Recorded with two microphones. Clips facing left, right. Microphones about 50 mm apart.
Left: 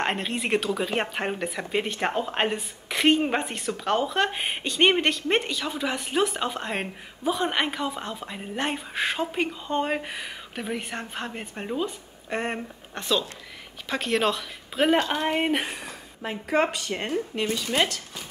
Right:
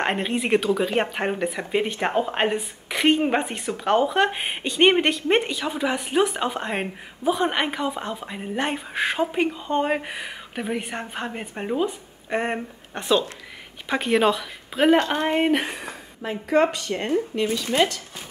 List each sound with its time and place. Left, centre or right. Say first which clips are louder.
0.0 s speech: right 3 dB; centre
15.0 s speech: right 3 dB; right
15.2 s speech: right 4 dB; centre
16.2 s a woman's voice: right 4 dB; centre